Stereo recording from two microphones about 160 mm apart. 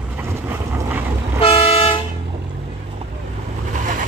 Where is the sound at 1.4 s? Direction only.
35° left (ahead or behind).